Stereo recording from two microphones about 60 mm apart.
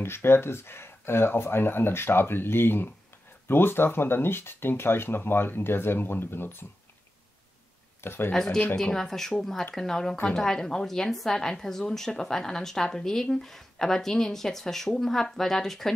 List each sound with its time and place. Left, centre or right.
0.0 s speech: left
8.0 s speech: left
8.3 s a woman's voice: centre